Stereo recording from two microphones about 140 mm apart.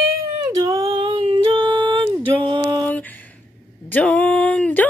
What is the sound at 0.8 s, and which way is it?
Music, 40° right (ahead or behind).